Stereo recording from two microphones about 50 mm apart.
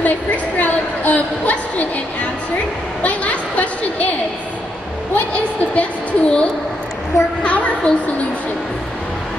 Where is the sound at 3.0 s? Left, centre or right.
Left.